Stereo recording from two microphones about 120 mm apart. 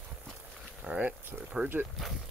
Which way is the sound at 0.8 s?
10° right (ahead or behind).